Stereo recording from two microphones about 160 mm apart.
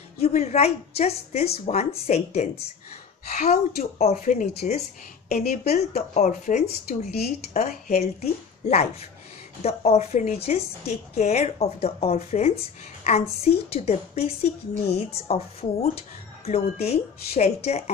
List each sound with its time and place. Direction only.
0.2 s a woman's voice: 45° left (ahead or behind)